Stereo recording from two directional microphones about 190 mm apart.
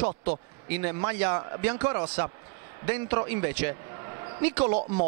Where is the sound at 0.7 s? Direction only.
15° right (ahead or behind).